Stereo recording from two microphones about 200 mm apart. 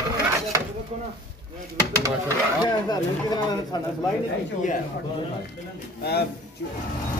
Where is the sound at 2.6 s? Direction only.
20° left (ahead or behind).